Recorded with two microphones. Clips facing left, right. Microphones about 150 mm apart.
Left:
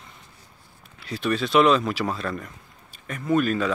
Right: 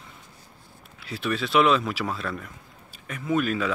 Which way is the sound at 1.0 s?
5° right (ahead or behind).